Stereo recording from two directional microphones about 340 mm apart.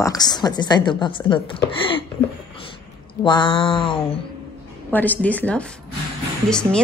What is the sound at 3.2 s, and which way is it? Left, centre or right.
Speech, centre.